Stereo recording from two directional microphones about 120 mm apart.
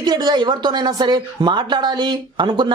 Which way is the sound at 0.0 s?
35° right (ahead or behind).